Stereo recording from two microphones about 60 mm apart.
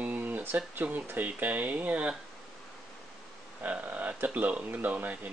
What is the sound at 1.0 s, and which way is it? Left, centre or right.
Speech, right.